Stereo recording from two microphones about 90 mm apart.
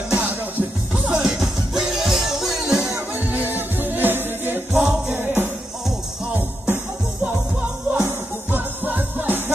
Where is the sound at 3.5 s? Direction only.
20° right (ahead or behind).